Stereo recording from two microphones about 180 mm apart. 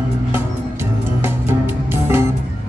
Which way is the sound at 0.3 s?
15° right (ahead or behind).